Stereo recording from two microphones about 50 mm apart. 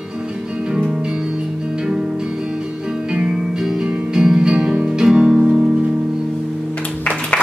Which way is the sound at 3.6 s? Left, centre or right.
Centre.